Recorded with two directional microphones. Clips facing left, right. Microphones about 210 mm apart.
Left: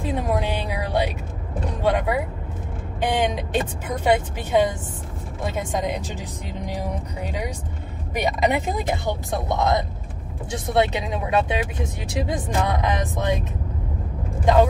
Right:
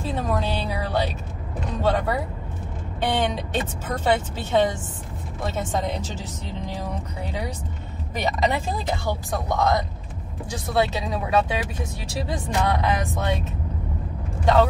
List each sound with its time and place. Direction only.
0.0 s a sound: 15° left (ahead or behind)
1.8 s speech: 15° left (ahead or behind)
14.4 s speech: 15° left (ahead or behind)